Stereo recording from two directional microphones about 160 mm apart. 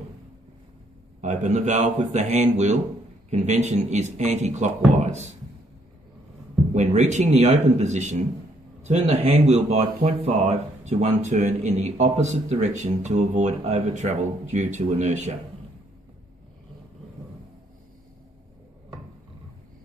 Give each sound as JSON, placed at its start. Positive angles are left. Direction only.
{"t": 1.2, "sound": "speech", "side_deg": -45}
{"t": 6.7, "sound": "speech", "side_deg": -45}